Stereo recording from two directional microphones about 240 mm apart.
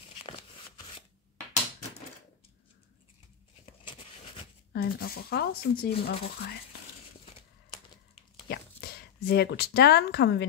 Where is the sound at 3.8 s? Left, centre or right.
Left.